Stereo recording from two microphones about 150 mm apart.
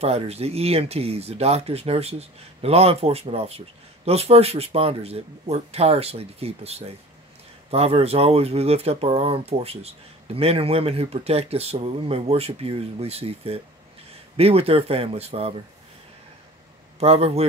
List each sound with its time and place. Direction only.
0.0 s speech: 45° right (ahead or behind)
17.0 s speech: 45° right (ahead or behind)